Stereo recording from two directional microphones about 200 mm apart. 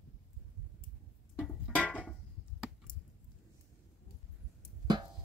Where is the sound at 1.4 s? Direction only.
5° left (ahead or behind).